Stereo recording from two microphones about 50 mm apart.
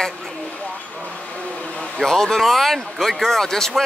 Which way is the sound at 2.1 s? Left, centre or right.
Centre.